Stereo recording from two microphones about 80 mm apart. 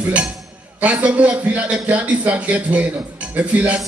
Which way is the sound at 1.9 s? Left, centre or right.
Centre.